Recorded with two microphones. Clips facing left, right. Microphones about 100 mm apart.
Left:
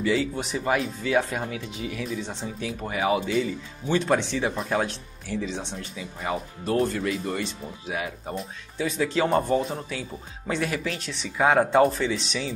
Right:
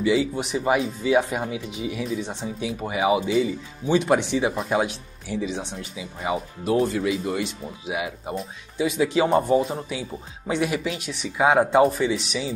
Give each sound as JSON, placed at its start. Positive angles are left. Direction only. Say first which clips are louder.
{"t": 0.0, "sound": "speech", "louder": "right 3 dB", "side_deg": -10}